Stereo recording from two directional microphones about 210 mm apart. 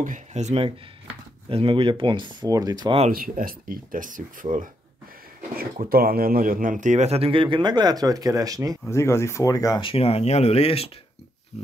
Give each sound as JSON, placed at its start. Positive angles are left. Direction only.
{"t": 0.0, "sound": "speech", "side_deg": -35}
{"t": 3.1, "sound": "speech", "side_deg": -45}
{"t": 8.8, "sound": "speech", "side_deg": 10}